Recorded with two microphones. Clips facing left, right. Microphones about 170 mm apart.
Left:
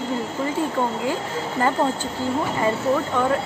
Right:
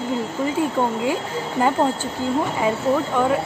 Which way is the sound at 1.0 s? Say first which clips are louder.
Right 2 dB; 15° right (ahead or behind).